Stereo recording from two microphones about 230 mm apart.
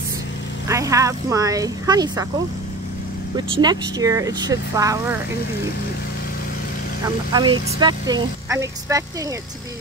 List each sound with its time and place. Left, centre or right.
0.7 s speech: centre
3.3 s speech: centre
7.3 s speech: centre